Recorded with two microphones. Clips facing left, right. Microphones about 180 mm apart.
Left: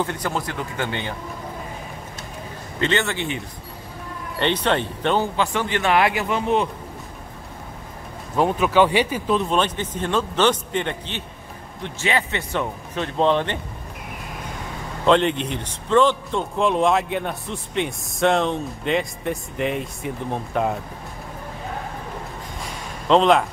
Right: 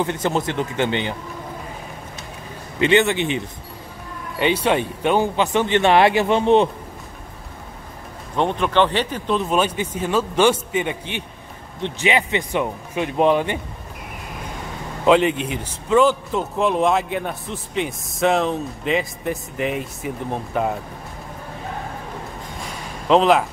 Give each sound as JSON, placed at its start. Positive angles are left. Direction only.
{"t": 0.0, "sound": "speech", "side_deg": -20}
{"t": 2.8, "sound": "speech", "side_deg": -15}
{"t": 4.4, "sound": "speech", "side_deg": -10}
{"t": 8.4, "sound": "speech", "side_deg": 5}
{"t": 15.0, "sound": "a man's voice", "side_deg": -5}
{"t": 23.0, "sound": "speech", "side_deg": -5}